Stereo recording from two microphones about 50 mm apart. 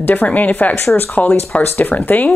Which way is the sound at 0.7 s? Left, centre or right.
Left.